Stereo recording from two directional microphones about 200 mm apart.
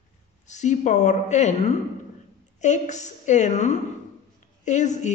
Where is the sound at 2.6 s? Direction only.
35° left (ahead or behind).